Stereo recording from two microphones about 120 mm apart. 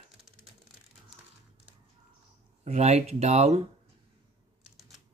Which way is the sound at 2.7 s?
65° right (ahead or behind).